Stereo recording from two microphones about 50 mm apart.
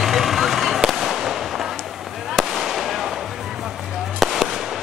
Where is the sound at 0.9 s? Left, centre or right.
Centre.